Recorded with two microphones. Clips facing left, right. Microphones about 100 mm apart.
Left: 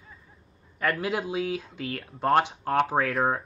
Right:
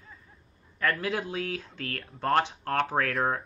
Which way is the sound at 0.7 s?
15° left (ahead or behind).